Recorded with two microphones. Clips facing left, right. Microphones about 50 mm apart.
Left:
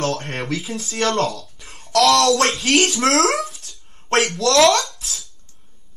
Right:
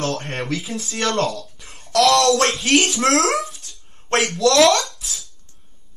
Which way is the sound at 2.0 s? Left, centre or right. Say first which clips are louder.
Even; centre.